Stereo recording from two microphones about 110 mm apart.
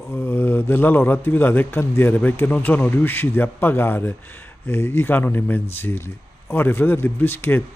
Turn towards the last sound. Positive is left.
turn(degrees=20)  # may be behind; listen again after turning